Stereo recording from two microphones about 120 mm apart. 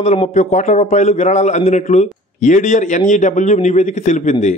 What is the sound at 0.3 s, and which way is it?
A man's voice, 75° left (ahead or behind).